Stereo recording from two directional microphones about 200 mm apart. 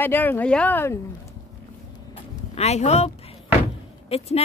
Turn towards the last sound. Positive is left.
turn(degrees=30)  # may be behind; listen again after turning